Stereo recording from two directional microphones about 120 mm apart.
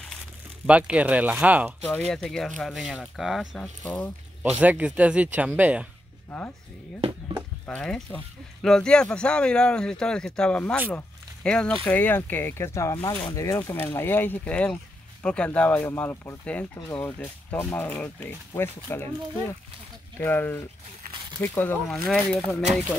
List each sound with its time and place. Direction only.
0.7 s speech: 10° right (ahead or behind)
2.0 s speech: 5° left (ahead or behind)
4.4 s speech: 15° right (ahead or behind)
7.6 s speech: 10° left (ahead or behind)
21.8 s speech: centre (ahead or behind)